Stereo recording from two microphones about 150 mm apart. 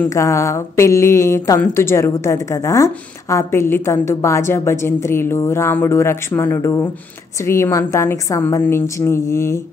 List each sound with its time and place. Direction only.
0.0 s speech: 20° left (ahead or behind)